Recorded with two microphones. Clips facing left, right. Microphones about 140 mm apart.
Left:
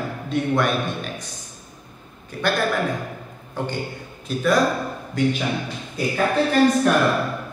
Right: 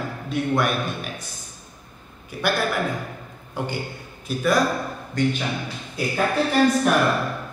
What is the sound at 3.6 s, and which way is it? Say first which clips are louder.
A man's voice: left 1 dB; 10° right (ahead or behind).